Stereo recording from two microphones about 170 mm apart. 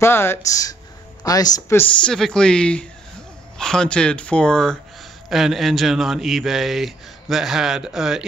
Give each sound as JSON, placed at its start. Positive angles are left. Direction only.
{"t": 0.0, "sound": "speech", "side_deg": 15}
{"t": 2.0, "sound": "a man's voice", "side_deg": 5}